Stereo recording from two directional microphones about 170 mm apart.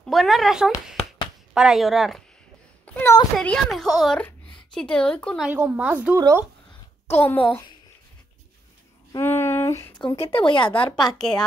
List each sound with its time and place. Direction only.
0.0 s a woman's voice: centre (ahead or behind)
2.8 s a sound: 10° left (ahead or behind)
3.3 s a woman's voice: centre (ahead or behind)
5.5 s a woman's voice: 10° right (ahead or behind)
7.2 s a child's voice: 10° left (ahead or behind)
9.1 s a sound: 15° left (ahead or behind)
9.9 s speech: 30° left (ahead or behind)
11.1 s a woman's voice: 5° left (ahead or behind)